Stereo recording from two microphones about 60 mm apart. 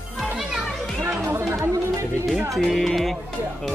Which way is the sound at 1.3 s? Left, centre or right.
Right.